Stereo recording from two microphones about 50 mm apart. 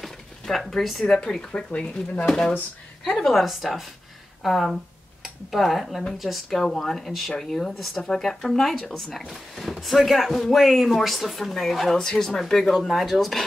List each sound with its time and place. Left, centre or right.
0.0 s a sound: centre
1.0 s speech: centre
3.2 s speech: centre